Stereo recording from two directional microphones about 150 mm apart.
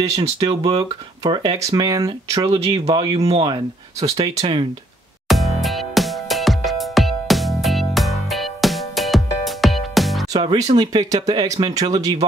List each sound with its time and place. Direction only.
0.4 s speech: 35° right (ahead or behind)
5.3 s music: centre (ahead or behind)
10.4 s speech: 40° right (ahead or behind)
10.8 s speech: 30° right (ahead or behind)